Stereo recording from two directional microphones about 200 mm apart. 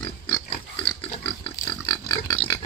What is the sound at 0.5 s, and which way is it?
Pig, 25° left (ahead or behind).